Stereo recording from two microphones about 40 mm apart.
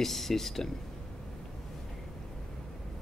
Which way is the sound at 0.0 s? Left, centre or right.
Centre.